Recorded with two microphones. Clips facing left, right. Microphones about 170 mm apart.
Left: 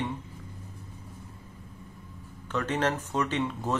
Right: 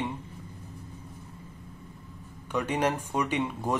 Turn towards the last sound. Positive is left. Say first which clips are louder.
# right 1 dB
turn(degrees=-10)  # may be behind; listen again after turning